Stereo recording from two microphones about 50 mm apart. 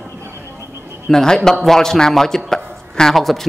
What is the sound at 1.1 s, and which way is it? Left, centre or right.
A man's voice, centre.